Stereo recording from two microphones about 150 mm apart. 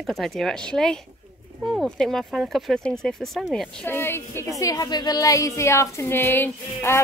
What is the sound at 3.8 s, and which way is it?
A woman's voice, 15° left (ahead or behind).